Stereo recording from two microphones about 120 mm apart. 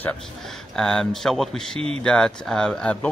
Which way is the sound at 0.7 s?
5° left (ahead or behind).